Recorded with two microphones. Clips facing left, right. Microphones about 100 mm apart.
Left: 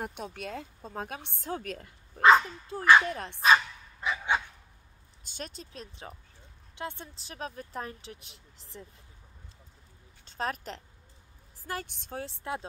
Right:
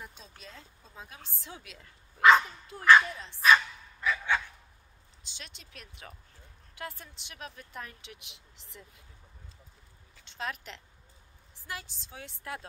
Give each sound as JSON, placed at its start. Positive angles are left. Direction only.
{"t": 0.0, "sound": "speech", "side_deg": 65}
{"t": 1.4, "sound": "speech", "side_deg": 45}
{"t": 3.1, "sound": "speech", "side_deg": 55}
{"t": 3.4, "sound": "dog", "side_deg": 25}
{"t": 5.2, "sound": "speech", "side_deg": 45}
{"t": 10.2, "sound": "a woman's voice", "side_deg": 40}
{"t": 11.6, "sound": "a woman's voice", "side_deg": 50}
{"t": 12.2, "sound": "speech", "side_deg": 30}